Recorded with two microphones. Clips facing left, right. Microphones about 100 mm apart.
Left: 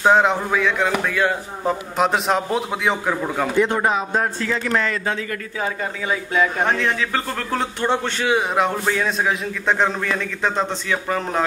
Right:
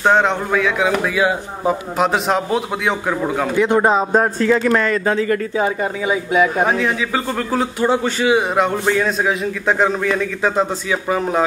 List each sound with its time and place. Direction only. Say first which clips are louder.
0.0 s a man's voice: right 1 dB; centre (ahead or behind)
3.8 s speech: right 6 dB; 30° right (ahead or behind)
4.2 s a man's voice: right 7 dB; 45° right (ahead or behind)
5.6 s a man's voice: right 6 dB; 15° right (ahead or behind)